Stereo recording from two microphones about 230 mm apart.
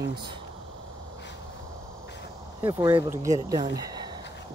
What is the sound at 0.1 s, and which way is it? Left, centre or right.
Speech, centre.